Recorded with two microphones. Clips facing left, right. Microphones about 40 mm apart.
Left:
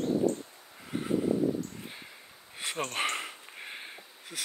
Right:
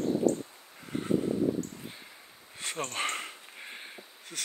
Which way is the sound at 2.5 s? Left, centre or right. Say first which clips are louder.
Left 1 dB; centre.